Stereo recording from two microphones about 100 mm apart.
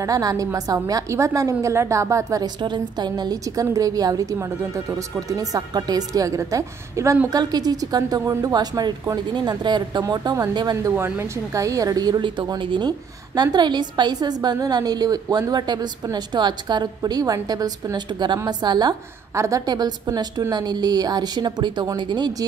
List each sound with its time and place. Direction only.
0.0 s a woman's voice: 40° right (ahead or behind)
2.4 s a woman's voice: 50° right (ahead or behind)
10.9 s a woman's voice: 20° right (ahead or behind)
15.5 s a woman's voice: 45° right (ahead or behind)
19.3 s a woman's voice: 30° right (ahead or behind)